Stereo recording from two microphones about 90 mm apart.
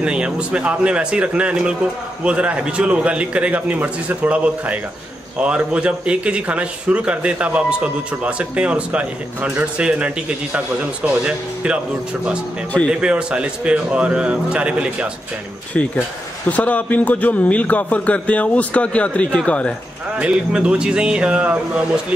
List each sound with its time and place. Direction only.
0.0 s a man's voice: 10° right (ahead or behind)
13.0 s a man's voice: 10° right (ahead or behind)
16.4 s a man's voice: 15° left (ahead or behind)
20.2 s a man's voice: 10° right (ahead or behind)